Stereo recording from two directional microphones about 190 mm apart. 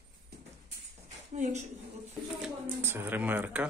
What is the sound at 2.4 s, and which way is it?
Speech, 10° right (ahead or behind).